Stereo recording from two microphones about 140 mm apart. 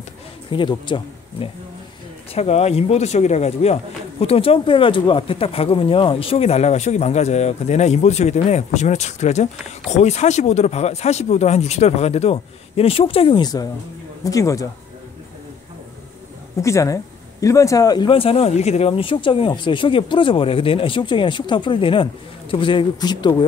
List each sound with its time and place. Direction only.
0.5 s speech: 35° left (ahead or behind)
2.3 s speech: 50° left (ahead or behind); by 14.7 s 25° left (ahead or behind)
16.6 s speech: 20° left (ahead or behind)